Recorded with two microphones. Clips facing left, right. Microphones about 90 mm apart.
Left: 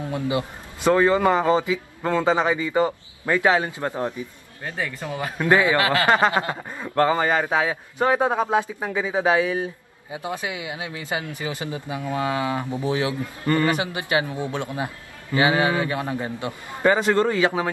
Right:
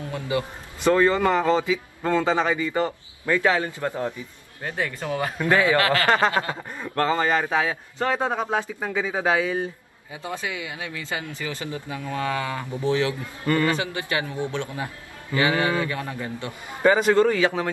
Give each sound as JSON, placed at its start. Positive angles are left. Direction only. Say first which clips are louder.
{"t": 0.1, "sound": "speech", "louder": "left 1 dB", "side_deg": 20}